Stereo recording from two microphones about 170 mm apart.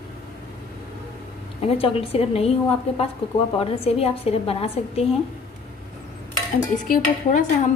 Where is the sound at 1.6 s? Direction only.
35° left (ahead or behind).